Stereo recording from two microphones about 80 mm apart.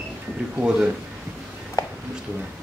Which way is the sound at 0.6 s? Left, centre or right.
Centre.